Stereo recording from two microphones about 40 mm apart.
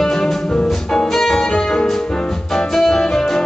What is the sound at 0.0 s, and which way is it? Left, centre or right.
Music, centre.